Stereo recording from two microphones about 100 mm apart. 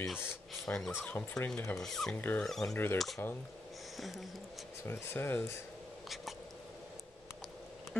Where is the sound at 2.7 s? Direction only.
20° left (ahead or behind).